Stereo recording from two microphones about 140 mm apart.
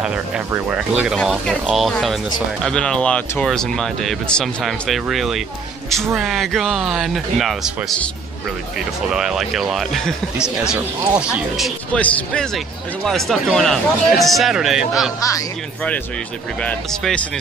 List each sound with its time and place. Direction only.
0.7 s speech: 5° right (ahead or behind)
9.1 s speech: centre (ahead or behind)
13.0 s speech: centre (ahead or behind)
15.1 s speech: 25° left (ahead or behind)
16.6 s speech: 10° left (ahead or behind)